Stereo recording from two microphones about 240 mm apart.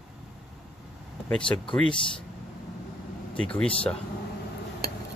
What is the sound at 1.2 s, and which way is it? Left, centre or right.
Speech, centre.